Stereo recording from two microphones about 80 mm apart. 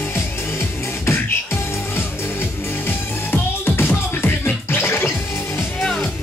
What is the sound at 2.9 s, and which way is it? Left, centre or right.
Music, left.